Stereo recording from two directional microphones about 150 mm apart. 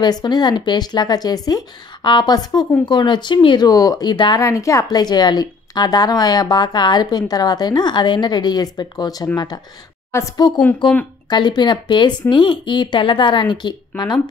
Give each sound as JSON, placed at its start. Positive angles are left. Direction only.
{"t": 0.0, "sound": "speech", "side_deg": 30}